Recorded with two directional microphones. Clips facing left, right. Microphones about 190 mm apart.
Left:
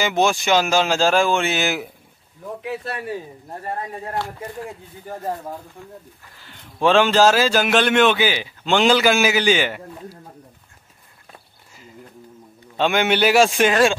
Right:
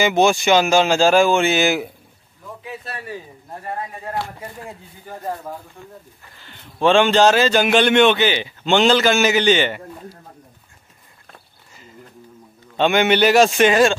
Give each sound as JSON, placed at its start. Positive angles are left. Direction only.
{"t": 0.0, "sound": "a man's voice", "side_deg": 0}
{"t": 2.6, "sound": "speech", "side_deg": 65}
{"t": 6.3, "sound": "a man's voice", "side_deg": 5}
{"t": 12.7, "sound": "a man's voice", "side_deg": 0}